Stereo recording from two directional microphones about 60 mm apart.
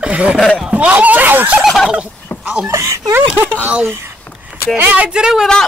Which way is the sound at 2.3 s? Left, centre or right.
Left.